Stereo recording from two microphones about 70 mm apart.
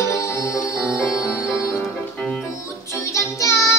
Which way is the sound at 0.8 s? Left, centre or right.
Centre.